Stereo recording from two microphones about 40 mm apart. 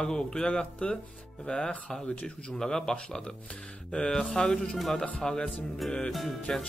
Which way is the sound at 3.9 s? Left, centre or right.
Centre.